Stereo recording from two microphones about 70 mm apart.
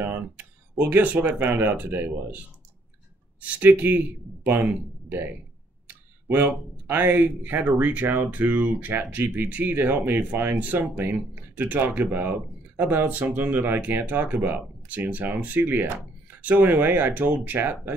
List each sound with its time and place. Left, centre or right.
0.0 s speech: right
5.9 s a sound: right
6.9 s speech: right